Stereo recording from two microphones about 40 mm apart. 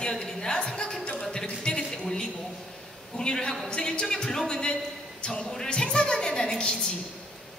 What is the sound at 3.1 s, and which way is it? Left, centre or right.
Speech, centre.